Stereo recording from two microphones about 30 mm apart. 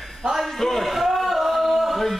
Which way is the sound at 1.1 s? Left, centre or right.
Centre.